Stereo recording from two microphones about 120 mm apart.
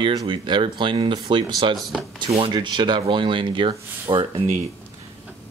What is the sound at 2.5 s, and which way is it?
Speech, 40° right (ahead or behind).